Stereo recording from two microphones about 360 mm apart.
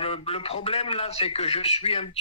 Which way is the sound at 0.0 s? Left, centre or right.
Centre.